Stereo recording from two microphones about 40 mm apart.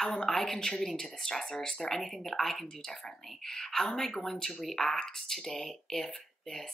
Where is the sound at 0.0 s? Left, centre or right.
Centre.